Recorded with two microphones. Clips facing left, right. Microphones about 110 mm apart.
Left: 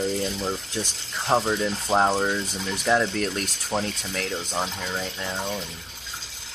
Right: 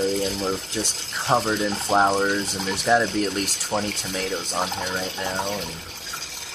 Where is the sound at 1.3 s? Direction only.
15° right (ahead or behind).